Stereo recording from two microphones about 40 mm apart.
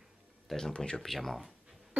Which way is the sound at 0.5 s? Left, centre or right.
Centre.